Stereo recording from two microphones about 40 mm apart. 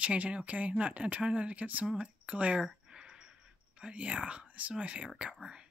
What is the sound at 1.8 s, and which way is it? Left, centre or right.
Speech, centre.